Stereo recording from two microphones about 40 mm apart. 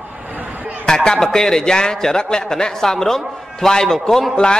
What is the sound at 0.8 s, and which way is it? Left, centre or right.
A man's voice, centre.